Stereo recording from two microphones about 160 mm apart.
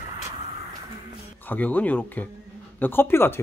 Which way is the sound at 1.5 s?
10° left (ahead or behind).